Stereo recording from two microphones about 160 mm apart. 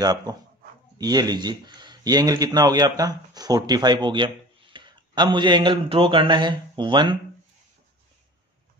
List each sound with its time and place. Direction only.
0.0 s speech: 25° right (ahead or behind)